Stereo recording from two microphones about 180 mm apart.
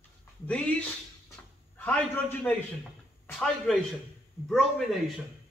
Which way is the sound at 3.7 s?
Centre (ahead or behind).